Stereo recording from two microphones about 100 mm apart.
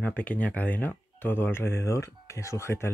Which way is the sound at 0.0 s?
15° left (ahead or behind).